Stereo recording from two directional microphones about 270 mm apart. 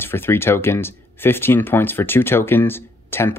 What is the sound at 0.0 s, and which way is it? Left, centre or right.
Speech, centre.